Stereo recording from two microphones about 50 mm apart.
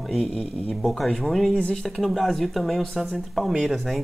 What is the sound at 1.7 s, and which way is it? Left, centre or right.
Speech, centre.